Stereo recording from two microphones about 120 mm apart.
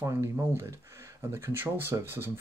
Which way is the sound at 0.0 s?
25° right (ahead or behind).